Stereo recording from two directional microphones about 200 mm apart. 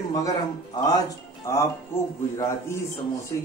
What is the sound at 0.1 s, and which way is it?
Speech, 20° left (ahead or behind).